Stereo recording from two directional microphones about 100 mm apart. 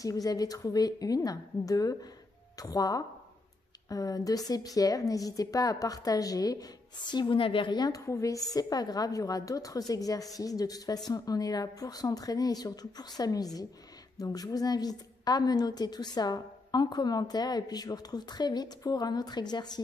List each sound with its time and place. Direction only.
0.0 s a woman's voice: 35° left (ahead or behind)
8.0 s a woman's voice: 30° left (ahead or behind)